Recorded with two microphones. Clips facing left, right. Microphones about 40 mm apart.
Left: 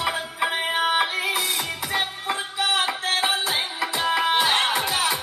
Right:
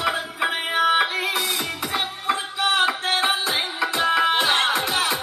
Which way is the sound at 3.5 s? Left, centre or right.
Centre.